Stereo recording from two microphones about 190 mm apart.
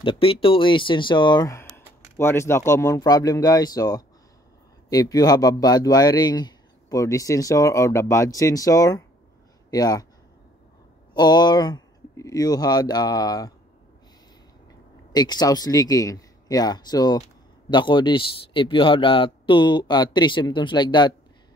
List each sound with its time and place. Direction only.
0.0 s speech: 25° left (ahead or behind)
11.1 s speech: 20° left (ahead or behind)
15.1 s speech: 20° left (ahead or behind)